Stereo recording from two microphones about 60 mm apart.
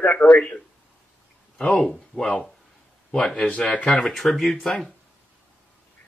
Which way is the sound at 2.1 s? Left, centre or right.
Left.